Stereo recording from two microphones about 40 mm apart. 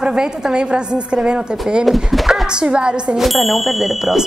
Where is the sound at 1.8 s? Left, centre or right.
Centre.